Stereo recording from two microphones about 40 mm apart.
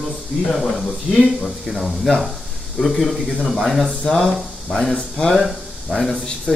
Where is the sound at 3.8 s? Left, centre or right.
Centre.